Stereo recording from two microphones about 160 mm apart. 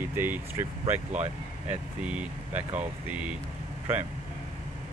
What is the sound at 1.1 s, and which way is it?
Speech, 45° right (ahead or behind).